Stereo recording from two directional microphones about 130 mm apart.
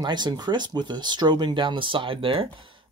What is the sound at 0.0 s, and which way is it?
Speech, 35° right (ahead or behind).